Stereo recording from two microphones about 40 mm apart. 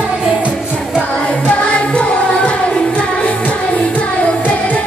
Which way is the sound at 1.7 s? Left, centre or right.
Left.